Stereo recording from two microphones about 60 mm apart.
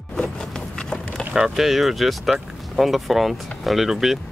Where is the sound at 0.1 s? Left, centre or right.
Centre.